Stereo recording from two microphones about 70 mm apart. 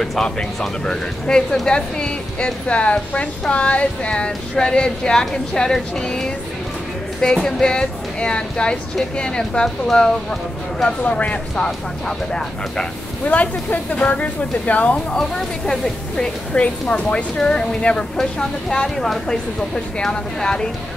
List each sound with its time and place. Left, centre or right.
0.0 s speech: centre
7.3 s speech: centre
13.2 s speech: left
15.1 s speech: centre